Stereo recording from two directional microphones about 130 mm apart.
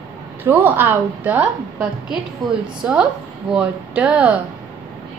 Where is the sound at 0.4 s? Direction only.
15° right (ahead or behind).